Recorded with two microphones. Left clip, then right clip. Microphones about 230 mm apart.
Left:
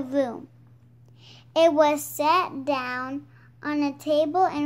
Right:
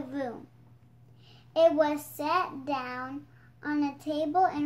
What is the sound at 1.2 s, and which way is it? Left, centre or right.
Child singing, left.